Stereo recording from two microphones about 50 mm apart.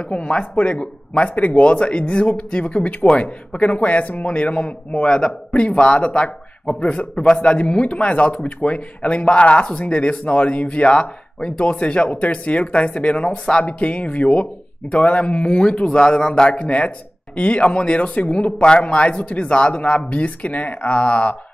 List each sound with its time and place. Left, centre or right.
0.1 s speech: left